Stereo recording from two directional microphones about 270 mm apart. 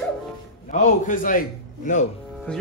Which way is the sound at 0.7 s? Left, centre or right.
Left.